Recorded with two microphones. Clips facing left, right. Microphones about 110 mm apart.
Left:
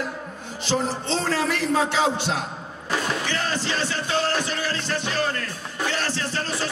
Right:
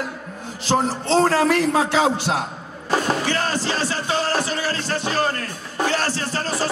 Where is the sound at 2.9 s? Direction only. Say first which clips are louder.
Right 5 dB; 40° right (ahead or behind).